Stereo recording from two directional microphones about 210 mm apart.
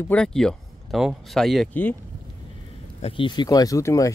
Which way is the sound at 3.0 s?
25° left (ahead or behind).